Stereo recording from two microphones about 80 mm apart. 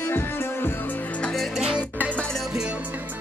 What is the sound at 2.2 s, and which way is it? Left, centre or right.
Music, centre.